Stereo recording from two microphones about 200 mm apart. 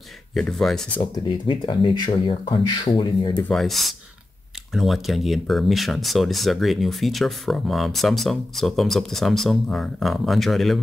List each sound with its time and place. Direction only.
0.3 s speech: 5° left (ahead or behind)
1.1 s speech: 25° left (ahead or behind)
3.4 s speech: centre (ahead or behind)